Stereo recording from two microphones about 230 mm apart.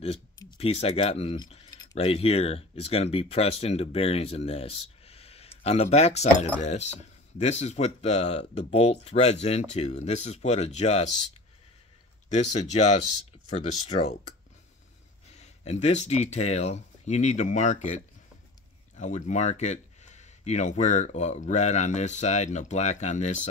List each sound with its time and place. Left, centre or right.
0.0 s speech: left
5.0 s a sound: left
6.6 s speech: left
12.7 s speech: left
15.3 s speech: left